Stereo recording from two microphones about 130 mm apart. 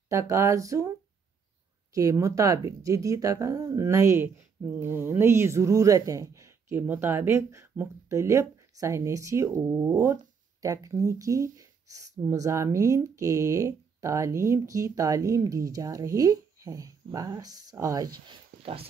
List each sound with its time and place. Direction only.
0.1 s speech: 20° right (ahead or behind)
2.0 s speech: 25° right (ahead or behind)